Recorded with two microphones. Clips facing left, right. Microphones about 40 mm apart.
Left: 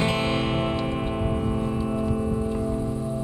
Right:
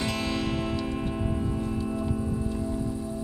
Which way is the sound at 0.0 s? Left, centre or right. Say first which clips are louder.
Left 5 dB; left.